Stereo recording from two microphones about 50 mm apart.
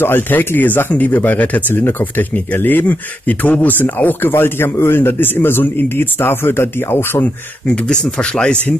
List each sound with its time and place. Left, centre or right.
0.0 s a man's voice: left
7.6 s speech: centre